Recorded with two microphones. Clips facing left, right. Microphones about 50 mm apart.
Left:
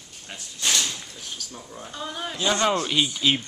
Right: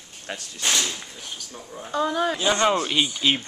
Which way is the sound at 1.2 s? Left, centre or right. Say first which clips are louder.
Even; centre.